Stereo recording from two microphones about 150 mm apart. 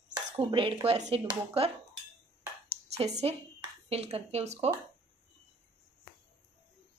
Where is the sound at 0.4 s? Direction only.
35° right (ahead or behind).